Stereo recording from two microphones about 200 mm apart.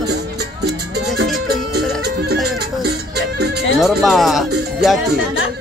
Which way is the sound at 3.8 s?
Centre (ahead or behind).